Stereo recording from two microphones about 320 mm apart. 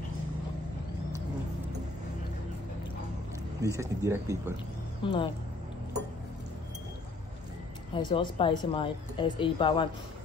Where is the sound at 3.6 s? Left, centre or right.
Centre.